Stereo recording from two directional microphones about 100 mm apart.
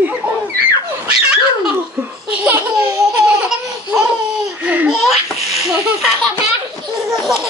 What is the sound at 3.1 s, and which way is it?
Laughter, 10° right (ahead or behind).